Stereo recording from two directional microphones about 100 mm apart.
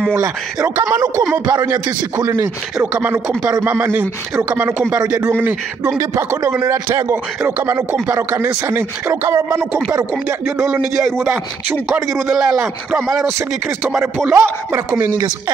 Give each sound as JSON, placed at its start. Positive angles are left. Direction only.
{"t": 0.9, "sound": "speech", "side_deg": -35}
{"t": 2.2, "sound": "a man's voice", "side_deg": -25}
{"t": 9.6, "sound": "speech", "side_deg": 5}
{"t": 12.1, "sound": "a man's voice", "side_deg": -5}
{"t": 14.3, "sound": "a man's voice", "side_deg": -25}
{"t": 15.1, "sound": "speech", "side_deg": -40}